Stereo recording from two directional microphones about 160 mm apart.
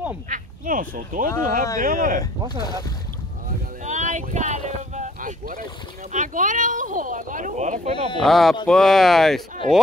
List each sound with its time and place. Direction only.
0.3 s speech: 55° right (ahead or behind)
3.8 s boat: 50° right (ahead or behind)
6.1 s speech: 50° right (ahead or behind)
8.2 s speech: centre (ahead or behind)
9.6 s speech: 50° right (ahead or behind)